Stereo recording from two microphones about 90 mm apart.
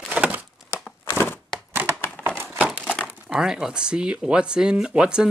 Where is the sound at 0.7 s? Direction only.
20° left (ahead or behind).